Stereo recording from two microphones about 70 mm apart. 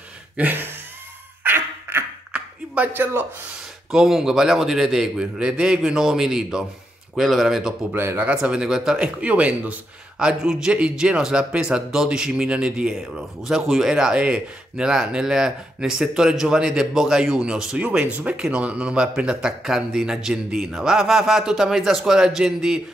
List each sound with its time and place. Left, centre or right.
0.4 s speech: right
1.4 s cough: right
2.3 s a sound: right
3.9 s speech: centre
7.9 s speech: right
8.3 s speech: centre
10.1 s speech: centre